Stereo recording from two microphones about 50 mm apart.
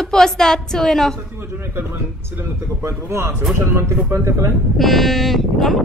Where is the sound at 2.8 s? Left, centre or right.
Right.